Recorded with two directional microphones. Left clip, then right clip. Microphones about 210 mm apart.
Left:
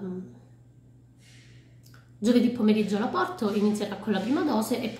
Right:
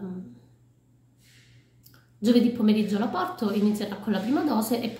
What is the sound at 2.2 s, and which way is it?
A woman's voice, centre (ahead or behind).